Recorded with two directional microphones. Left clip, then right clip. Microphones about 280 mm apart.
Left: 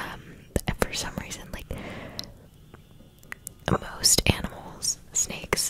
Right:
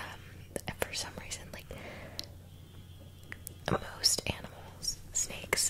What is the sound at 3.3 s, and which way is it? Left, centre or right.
Whispering, left.